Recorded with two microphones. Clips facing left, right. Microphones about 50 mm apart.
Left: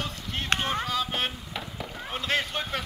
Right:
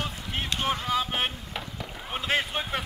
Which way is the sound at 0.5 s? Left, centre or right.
Left.